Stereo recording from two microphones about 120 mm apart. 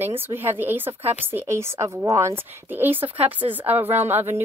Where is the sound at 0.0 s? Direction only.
15° right (ahead or behind).